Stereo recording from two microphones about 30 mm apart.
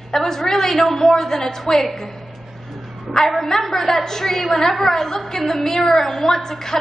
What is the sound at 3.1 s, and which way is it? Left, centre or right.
A woman's voice, centre.